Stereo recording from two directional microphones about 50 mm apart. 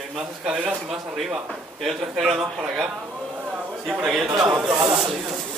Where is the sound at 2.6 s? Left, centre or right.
Centre.